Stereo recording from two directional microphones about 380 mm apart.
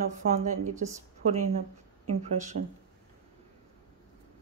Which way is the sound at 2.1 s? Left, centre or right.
Centre.